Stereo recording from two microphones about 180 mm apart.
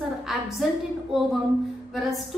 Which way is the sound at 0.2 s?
Centre (ahead or behind).